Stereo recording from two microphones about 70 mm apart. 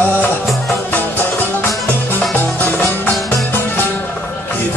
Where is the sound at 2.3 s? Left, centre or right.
Left.